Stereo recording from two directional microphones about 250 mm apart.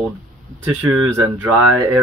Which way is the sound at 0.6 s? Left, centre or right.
Centre.